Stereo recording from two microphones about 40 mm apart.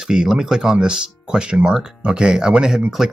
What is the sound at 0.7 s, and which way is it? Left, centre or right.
Speech, right.